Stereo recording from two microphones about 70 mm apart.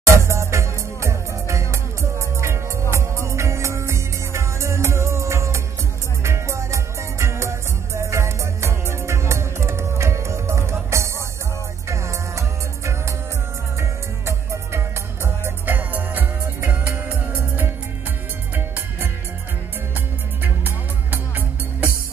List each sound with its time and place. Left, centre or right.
0.0 s music: right
15.2 s music: right
20.4 s music: right